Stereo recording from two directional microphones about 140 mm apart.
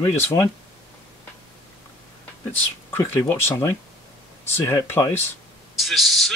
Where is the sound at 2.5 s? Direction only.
15° left (ahead or behind).